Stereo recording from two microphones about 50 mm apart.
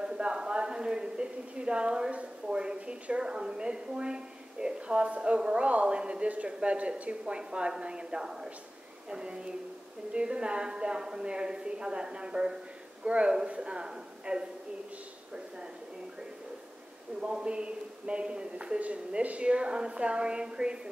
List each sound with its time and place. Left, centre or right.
0.0 s a woman's voice: centre
17.2 s speech: centre